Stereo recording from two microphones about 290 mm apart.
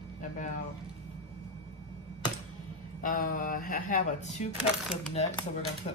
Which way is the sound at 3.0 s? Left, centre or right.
Left.